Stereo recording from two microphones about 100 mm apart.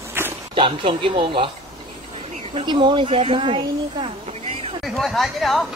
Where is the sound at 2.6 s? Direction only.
55° right (ahead or behind); by 4.7 s 75° right (ahead or behind).